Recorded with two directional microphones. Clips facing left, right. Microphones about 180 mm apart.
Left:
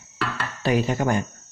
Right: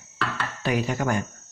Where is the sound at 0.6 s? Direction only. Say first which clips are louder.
Left 4 dB; 30° left (ahead or behind).